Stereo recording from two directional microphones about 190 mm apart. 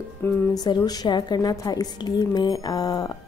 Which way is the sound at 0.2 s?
20° left (ahead or behind).